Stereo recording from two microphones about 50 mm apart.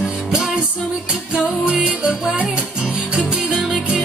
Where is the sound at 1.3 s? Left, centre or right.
Right.